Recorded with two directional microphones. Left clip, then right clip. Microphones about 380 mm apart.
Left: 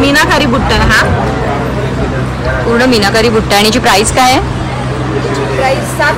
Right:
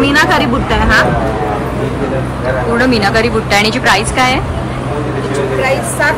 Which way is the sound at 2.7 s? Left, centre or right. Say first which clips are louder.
Left 3 dB; centre.